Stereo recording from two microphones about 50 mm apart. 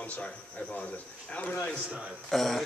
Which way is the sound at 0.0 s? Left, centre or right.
Left.